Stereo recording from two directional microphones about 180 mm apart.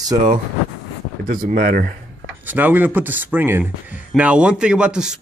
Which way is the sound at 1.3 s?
50° right (ahead or behind).